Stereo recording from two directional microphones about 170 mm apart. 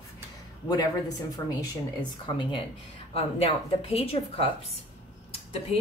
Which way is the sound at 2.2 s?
30° left (ahead or behind).